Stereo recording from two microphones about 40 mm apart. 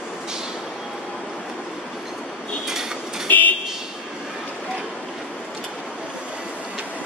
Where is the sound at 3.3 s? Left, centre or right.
Left.